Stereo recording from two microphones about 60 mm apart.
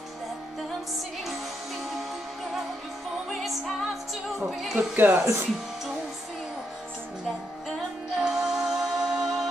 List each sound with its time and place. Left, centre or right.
3.3 s music: centre
4.6 s speech: centre
4.9 s speech: right
8.2 s music: centre